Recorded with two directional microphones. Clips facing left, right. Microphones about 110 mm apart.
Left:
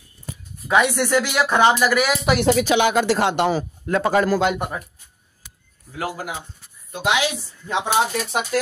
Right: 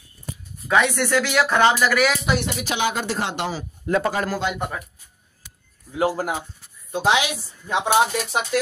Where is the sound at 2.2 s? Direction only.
70° left (ahead or behind).